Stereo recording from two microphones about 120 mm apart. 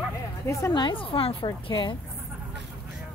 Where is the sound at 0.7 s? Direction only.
40° left (ahead or behind).